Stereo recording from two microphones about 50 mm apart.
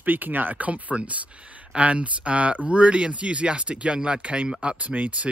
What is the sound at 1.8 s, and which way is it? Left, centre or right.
Speech, right.